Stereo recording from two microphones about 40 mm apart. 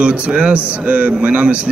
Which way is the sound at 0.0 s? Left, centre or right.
Right.